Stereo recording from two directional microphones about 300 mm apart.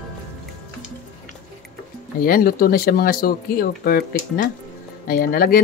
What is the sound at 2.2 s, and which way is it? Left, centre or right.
Speech, left.